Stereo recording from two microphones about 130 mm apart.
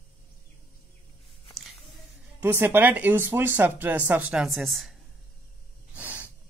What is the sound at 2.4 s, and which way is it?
Speech, 15° right (ahead or behind).